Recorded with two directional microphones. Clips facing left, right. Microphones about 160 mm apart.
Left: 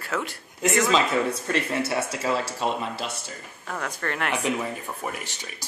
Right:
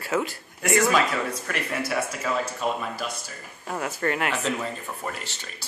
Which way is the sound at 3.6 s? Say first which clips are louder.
Right 4 dB; 10° right (ahead or behind).